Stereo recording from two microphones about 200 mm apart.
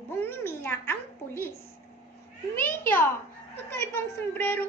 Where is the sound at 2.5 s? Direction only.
10° left (ahead or behind).